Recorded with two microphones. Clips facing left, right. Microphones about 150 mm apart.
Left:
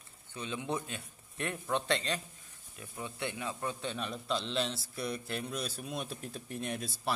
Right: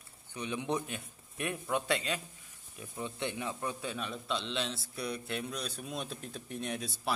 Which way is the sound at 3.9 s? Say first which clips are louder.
Left 1 dB; centre (ahead or behind).